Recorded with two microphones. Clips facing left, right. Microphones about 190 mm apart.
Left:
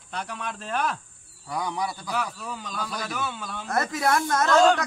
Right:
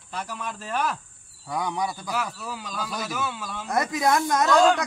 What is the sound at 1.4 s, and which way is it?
Speech, 20° right (ahead or behind).